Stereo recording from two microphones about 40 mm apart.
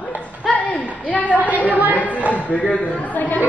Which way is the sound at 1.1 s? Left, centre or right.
Left.